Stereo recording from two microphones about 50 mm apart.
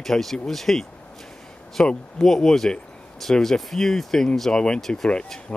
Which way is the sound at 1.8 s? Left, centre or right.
Centre.